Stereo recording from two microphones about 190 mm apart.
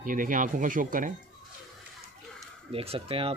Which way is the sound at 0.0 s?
45° right (ahead or behind).